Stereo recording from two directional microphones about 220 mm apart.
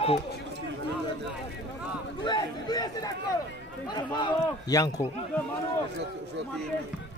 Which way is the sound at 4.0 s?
20° left (ahead or behind).